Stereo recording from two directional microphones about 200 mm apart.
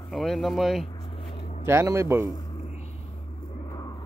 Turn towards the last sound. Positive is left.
turn(degrees=20)  # may be behind; listen again after turning